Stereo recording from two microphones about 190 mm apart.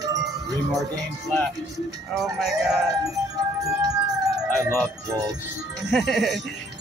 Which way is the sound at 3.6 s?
20° right (ahead or behind).